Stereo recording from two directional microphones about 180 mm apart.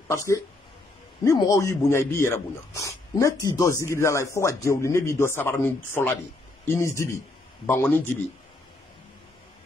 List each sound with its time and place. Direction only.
0.1 s speech: 15° left (ahead or behind)